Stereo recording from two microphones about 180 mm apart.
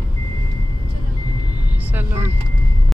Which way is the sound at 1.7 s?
10° right (ahead or behind).